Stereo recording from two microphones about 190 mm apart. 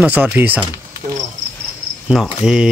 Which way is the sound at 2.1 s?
Centre (ahead or behind).